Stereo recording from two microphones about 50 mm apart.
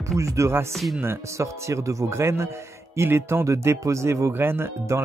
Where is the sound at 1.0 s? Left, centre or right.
Right.